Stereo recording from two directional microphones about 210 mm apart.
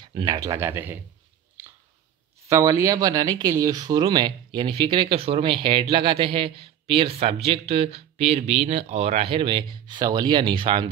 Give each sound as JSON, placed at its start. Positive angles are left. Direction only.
{"t": 0.0, "sound": "speech", "side_deg": -20}
{"t": 2.4, "sound": "speech", "side_deg": -15}